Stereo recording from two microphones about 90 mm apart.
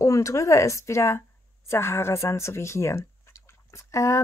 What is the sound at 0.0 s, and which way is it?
A woman's voice, 35° left (ahead or behind).